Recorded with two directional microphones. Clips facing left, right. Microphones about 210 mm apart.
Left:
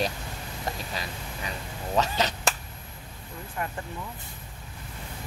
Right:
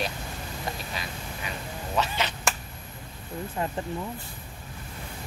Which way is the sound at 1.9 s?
40° left (ahead or behind).